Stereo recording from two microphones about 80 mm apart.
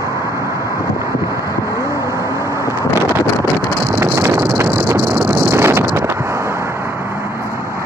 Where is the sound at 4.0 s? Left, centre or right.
Right.